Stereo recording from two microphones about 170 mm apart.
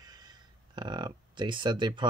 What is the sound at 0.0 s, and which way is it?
Speech, 25° right (ahead or behind).